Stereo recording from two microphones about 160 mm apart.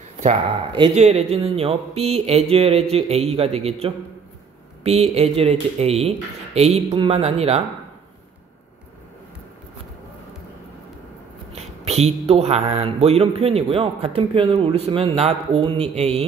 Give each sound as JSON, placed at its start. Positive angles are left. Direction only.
{"t": 0.2, "sound": "a man's voice", "side_deg": -35}
{"t": 11.5, "sound": "a man's voice", "side_deg": -40}